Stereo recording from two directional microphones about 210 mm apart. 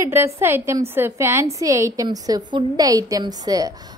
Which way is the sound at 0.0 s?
10° right (ahead or behind).